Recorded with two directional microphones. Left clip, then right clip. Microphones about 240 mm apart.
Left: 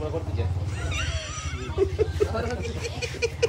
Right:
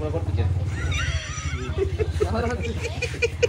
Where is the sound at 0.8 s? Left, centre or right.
Centre.